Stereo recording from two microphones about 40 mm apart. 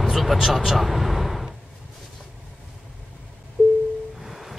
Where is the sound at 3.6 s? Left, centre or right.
Right.